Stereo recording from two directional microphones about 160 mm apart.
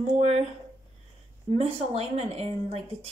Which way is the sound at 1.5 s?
40° right (ahead or behind).